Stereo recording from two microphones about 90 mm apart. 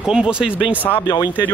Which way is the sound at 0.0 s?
10° right (ahead or behind).